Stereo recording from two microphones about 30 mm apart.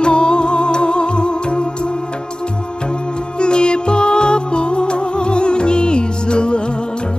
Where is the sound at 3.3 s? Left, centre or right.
Left.